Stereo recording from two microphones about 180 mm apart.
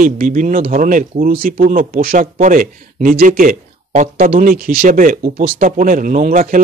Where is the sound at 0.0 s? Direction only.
45° right (ahead or behind).